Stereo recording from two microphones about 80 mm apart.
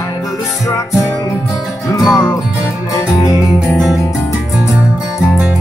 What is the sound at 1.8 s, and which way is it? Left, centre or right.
Music, left.